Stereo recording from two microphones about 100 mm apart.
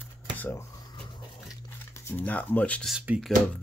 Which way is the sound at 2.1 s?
15° left (ahead or behind).